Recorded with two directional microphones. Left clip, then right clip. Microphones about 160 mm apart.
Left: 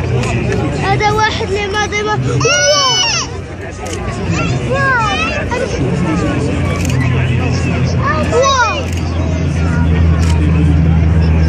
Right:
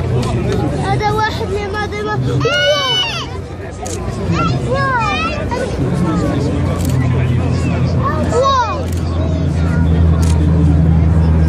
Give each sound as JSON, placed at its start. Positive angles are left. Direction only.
{"t": 0.8, "sound": "a sound", "side_deg": 20}
{"t": 2.4, "sound": "speech", "side_deg": 40}
{"t": 2.9, "sound": "baby cry", "side_deg": 40}
{"t": 4.3, "sound": "vehicle", "side_deg": 50}
{"t": 8.4, "sound": "vehicle", "side_deg": 25}